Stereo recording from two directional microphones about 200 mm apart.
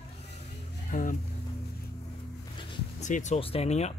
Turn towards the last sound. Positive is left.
turn(degrees=30)  # may be behind; listen again after turning